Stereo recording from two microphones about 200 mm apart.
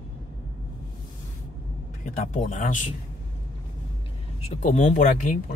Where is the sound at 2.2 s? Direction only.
40° left (ahead or behind).